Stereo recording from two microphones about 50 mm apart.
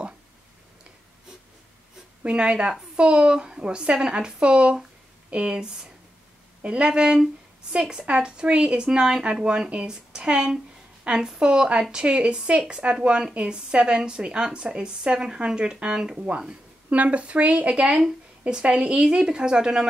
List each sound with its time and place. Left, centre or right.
2.2 s a woman's voice: right